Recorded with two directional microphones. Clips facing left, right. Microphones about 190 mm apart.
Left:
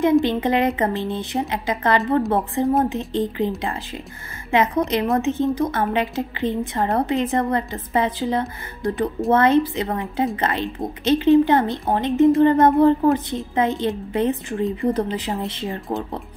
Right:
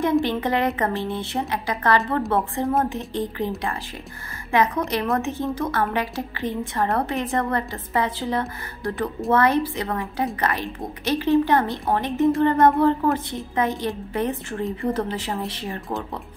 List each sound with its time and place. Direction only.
0.2 s a woman's voice: 20° left (ahead or behind)